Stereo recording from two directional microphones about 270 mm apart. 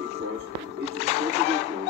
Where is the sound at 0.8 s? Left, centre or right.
Left.